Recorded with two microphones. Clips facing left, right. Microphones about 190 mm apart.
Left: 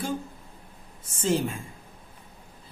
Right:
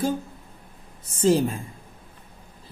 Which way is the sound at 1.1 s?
40° right (ahead or behind).